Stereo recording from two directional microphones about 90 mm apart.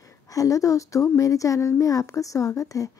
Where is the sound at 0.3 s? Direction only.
40° left (ahead or behind).